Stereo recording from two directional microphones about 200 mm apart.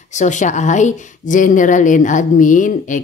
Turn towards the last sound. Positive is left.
turn(degrees=40)  # may be behind; listen again after turning